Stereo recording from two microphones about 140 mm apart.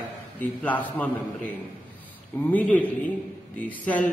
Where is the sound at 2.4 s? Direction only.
10° left (ahead or behind).